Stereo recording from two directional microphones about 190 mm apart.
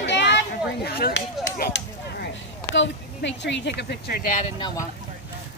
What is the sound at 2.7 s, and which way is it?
Speech, 70° left (ahead or behind).